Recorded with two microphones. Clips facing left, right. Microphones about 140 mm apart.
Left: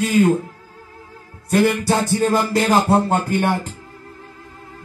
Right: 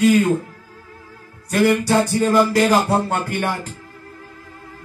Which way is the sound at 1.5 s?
25° left (ahead or behind).